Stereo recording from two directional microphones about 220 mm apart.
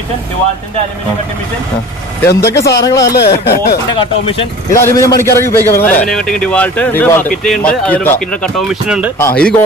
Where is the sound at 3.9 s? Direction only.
25° left (ahead or behind).